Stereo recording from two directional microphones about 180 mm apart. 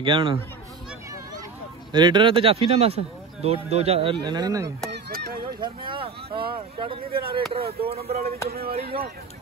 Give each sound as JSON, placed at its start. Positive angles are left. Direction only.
{"t": 0.0, "sound": "speech", "side_deg": -25}
{"t": 1.9, "sound": "speech", "side_deg": -25}
{"t": 4.9, "sound": "honk", "side_deg": -55}
{"t": 5.6, "sound": "speech", "side_deg": -30}
{"t": 8.5, "sound": "speech", "side_deg": -60}